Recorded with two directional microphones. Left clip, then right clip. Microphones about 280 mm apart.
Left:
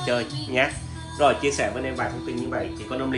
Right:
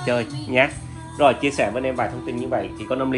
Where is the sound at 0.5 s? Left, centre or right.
Right.